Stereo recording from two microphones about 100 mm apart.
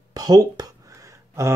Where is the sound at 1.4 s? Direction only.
30° right (ahead or behind).